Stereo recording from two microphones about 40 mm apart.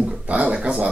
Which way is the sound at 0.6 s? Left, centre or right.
Right.